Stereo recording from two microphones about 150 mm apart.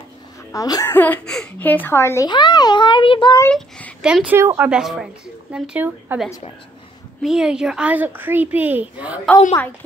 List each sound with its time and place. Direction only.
0.5 s speech: 25° left (ahead or behind)
0.9 s speech: 10° left (ahead or behind)
2.2 s a child's voice: 30° left (ahead or behind)
3.4 s speech: 10° left (ahead or behind)
4.0 s a woman's voice: 5° right (ahead or behind)